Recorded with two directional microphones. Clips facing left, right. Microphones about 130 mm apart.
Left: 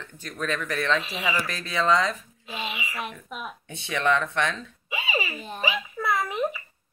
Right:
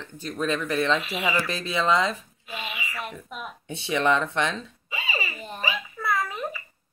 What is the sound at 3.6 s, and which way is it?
Speech, 25° right (ahead or behind).